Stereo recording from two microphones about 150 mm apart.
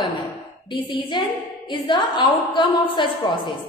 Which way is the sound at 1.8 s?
35° left (ahead or behind).